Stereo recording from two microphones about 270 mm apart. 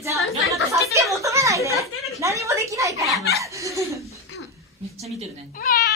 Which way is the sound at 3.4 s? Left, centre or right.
Centre.